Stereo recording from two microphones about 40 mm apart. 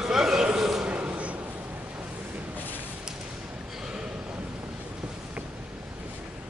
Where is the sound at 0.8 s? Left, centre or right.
Right.